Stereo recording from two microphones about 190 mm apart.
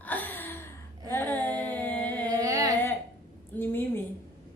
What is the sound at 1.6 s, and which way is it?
Music, 10° left (ahead or behind).